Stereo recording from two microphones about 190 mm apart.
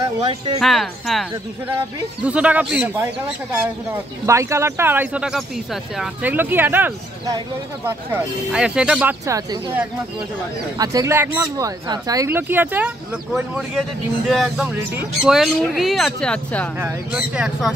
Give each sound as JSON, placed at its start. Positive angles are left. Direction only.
{"t": 0.0, "sound": "speech", "side_deg": -30}
{"t": 0.6, "sound": "speech", "side_deg": 0}
{"t": 2.2, "sound": "speech", "side_deg": -5}
{"t": 9.2, "sound": "speech", "side_deg": -15}